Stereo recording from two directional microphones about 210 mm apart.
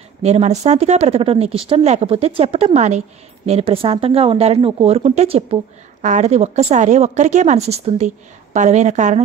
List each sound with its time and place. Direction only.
0.2 s a woman's voice: 30° right (ahead or behind)